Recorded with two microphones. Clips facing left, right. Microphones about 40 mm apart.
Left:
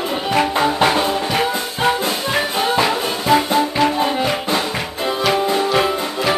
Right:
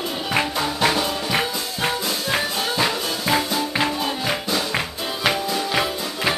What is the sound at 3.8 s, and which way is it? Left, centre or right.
Music, left.